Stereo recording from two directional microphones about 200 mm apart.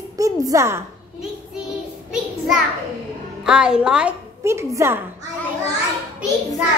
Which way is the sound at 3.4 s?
5° right (ahead or behind).